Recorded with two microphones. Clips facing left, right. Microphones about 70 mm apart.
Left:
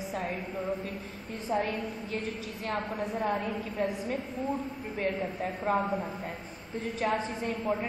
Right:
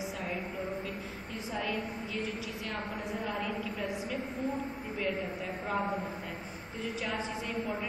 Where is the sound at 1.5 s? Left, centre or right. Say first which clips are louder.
Left 5 dB; left.